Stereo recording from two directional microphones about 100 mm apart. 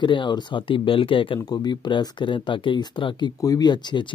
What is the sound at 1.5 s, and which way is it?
Speech, 50° left (ahead or behind).